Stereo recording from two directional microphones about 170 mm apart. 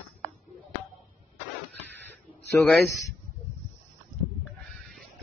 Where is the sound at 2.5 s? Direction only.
15° left (ahead or behind).